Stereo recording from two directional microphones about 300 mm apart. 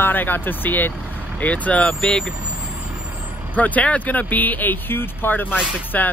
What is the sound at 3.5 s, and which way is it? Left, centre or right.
Speech, centre.